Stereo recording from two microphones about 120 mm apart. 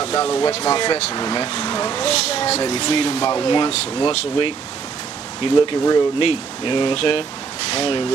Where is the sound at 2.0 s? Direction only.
50° left (ahead or behind).